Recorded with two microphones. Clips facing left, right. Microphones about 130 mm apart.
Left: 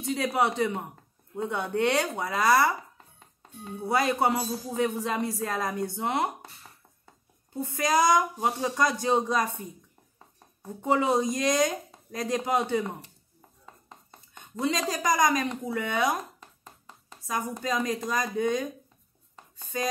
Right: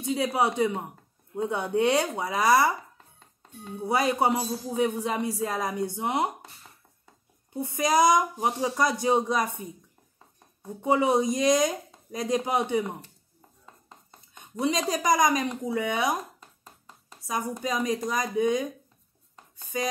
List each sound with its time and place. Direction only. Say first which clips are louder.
0.0 s a man's voice: right 1 dB; 15° right (ahead or behind)
3.8 s a man's voice: right 1 dB; 15° right (ahead or behind)
7.5 s a man's voice: right 2 dB; 20° right (ahead or behind)
10.8 s a man's voice: right 2 dB; 15° right (ahead or behind)
14.3 s dishes: right 2 dB; 15° right (ahead or behind)
15.0 s a man's voice: right 1 dB; 15° right (ahead or behind)
16.6 s a sound: left 1 dB; centre (ahead or behind)
17.3 s a man's voice: even; 15° right (ahead or behind)